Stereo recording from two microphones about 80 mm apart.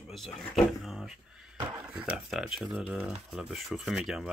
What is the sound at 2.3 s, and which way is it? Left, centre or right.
Speech, centre.